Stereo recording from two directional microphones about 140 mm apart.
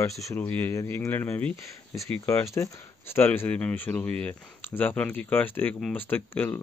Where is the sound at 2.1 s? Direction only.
20° left (ahead or behind).